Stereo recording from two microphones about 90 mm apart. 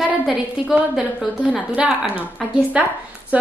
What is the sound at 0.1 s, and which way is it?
A woman's voice, 15° right (ahead or behind).